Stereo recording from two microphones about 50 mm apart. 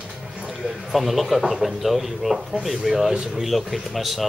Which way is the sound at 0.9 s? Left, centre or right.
Centre.